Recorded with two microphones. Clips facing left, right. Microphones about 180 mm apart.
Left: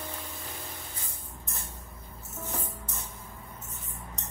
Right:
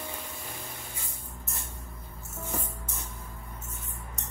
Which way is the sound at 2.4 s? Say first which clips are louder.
Right 1 dB; 10° right (ahead or behind).